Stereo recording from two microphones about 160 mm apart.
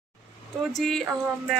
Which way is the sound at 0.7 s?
Centre (ahead or behind).